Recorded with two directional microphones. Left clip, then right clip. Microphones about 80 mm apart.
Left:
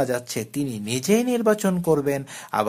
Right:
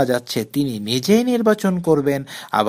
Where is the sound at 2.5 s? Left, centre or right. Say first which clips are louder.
Right 5 dB; right.